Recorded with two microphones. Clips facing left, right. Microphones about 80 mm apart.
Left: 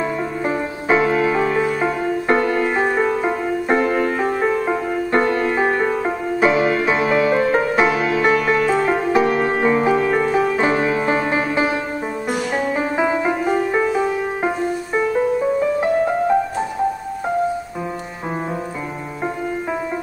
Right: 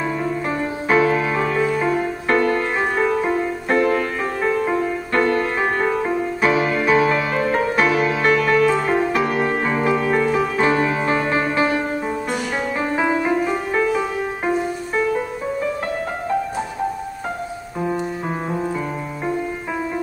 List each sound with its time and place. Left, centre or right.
0.8 s music: left
1.8 s music: left